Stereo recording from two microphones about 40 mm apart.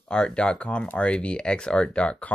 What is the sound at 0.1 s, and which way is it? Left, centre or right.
Speech, left.